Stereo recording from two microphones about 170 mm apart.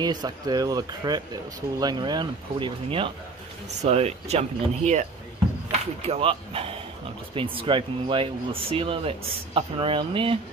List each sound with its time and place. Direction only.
0.0 s speech: 25° right (ahead or behind)